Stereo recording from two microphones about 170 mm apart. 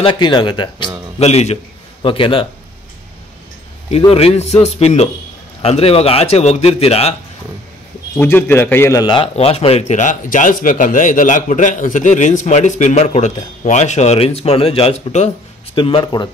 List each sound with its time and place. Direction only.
0.0 s speech: 30° left (ahead or behind)
1.2 s a man's voice: 40° left (ahead or behind)
4.1 s a man's voice: 35° left (ahead or behind)
8.2 s a man's voice: 10° left (ahead or behind); by 16.3 s 30° left (ahead or behind)